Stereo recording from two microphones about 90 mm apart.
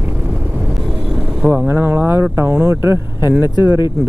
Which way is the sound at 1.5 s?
20° right (ahead or behind).